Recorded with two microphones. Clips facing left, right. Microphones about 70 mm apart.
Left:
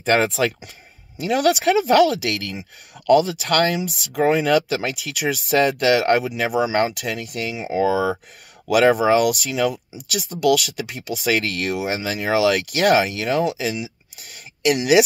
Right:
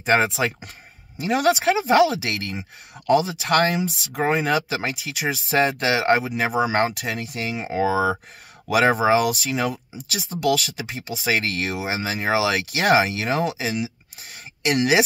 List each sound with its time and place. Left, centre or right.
0.0 s speech: centre; by 7.9 s right
7.9 s speech: right
14.3 s a sound: right
14.8 s speech: right